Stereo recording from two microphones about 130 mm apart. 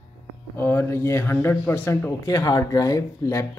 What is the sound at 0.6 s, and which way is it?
A man's voice, 20° left (ahead or behind).